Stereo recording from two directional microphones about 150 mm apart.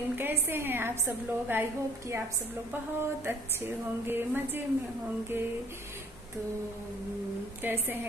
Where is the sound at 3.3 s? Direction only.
15° right (ahead or behind).